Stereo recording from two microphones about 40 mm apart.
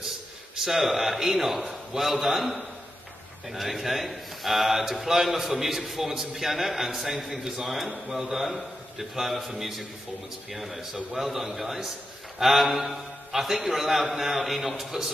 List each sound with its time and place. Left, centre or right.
0.6 s a man's voice: centre